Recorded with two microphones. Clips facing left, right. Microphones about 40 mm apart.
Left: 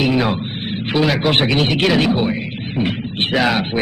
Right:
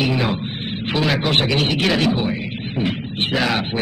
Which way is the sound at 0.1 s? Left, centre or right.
Centre.